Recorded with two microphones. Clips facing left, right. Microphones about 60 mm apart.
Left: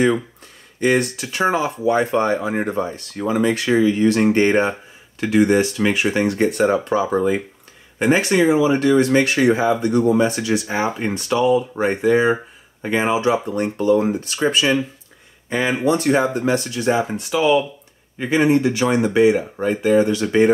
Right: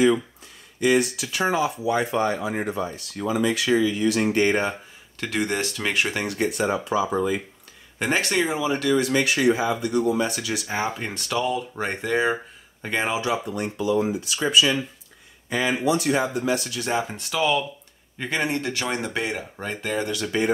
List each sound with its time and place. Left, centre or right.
0.7 s speech: left
4.5 s speech: left
6.2 s speech: left
6.5 s speech: left
8.0 s speech: centre
8.7 s speech: left
10.7 s speech: centre
13.6 s speech: left
15.8 s speech: left
17.1 s speech: centre
20.1 s speech: left